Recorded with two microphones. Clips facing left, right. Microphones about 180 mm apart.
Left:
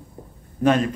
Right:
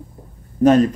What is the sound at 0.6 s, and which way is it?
Speech, 40° right (ahead or behind).